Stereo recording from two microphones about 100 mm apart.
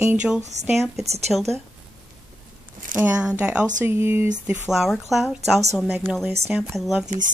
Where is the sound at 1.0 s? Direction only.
90° right.